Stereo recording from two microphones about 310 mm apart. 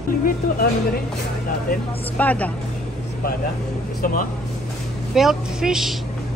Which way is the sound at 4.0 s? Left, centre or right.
Left.